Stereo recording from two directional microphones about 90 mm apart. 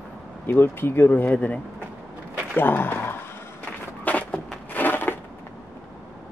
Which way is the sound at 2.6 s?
20° left (ahead or behind).